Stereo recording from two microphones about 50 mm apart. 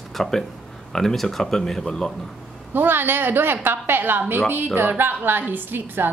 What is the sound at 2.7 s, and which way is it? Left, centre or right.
A woman's voice, right.